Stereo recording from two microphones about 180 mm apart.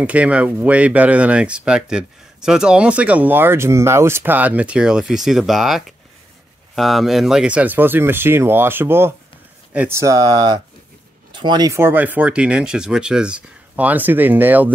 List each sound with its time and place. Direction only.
0.0 s speech: 5° right (ahead or behind)